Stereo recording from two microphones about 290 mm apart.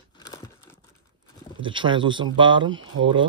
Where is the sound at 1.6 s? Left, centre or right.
Centre.